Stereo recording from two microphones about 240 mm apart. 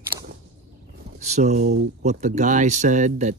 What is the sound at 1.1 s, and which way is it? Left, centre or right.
Speech, right.